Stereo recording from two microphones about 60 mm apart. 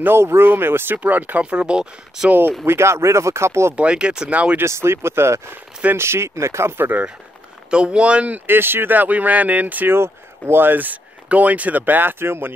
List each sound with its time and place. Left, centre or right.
0.0 s speech: right
1.4 s speech: centre
2.6 s speech: right
3.7 s speech: centre
4.6 s speech: right
6.8 s speech: right
7.7 s speech: centre
8.5 s speech: right
9.9 s speech: right